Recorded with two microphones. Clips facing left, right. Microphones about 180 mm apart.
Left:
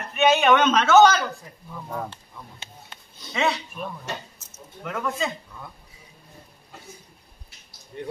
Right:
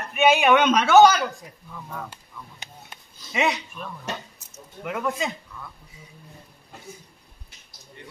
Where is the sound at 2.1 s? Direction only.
15° right (ahead or behind).